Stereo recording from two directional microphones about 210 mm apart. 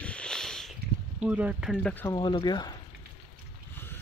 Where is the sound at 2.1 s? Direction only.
20° left (ahead or behind).